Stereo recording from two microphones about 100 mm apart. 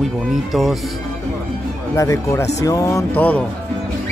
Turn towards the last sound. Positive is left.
turn(degrees=15)  # may be behind; listen again after turning